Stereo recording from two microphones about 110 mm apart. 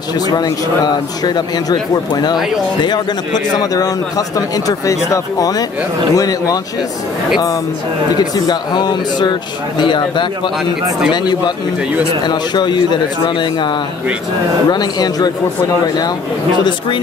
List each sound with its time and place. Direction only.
1.2 s speech: 40° left (ahead or behind)
2.8 s speech: 40° left (ahead or behind)
8.4 s speech: 40° left (ahead or behind)
12.3 s speech: 40° left (ahead or behind)